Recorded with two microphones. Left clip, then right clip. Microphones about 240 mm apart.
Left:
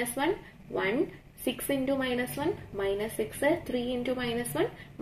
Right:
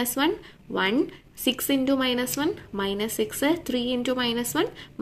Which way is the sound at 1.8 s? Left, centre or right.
Right.